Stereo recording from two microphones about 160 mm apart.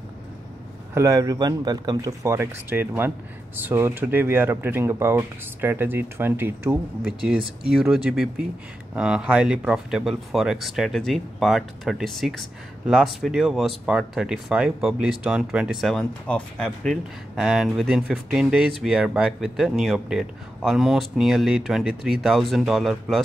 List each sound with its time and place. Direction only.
0.9 s speech: 20° right (ahead or behind); by 23.2 s centre (ahead or behind)